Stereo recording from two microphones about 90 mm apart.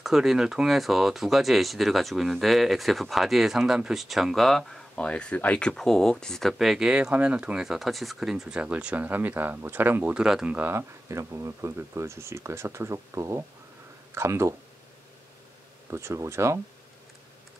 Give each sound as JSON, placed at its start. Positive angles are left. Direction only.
{"t": 0.0, "sound": "speech", "side_deg": -5}
{"t": 7.6, "sound": "speech", "side_deg": 0}
{"t": 10.1, "sound": "speech", "side_deg": -10}
{"t": 10.5, "sound": "speech", "side_deg": -25}
{"t": 15.9, "sound": "speech", "side_deg": -30}